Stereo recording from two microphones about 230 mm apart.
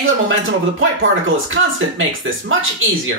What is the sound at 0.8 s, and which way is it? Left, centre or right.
Speech, right.